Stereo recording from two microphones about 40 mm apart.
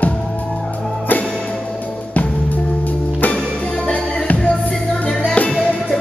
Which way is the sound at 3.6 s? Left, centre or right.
Centre.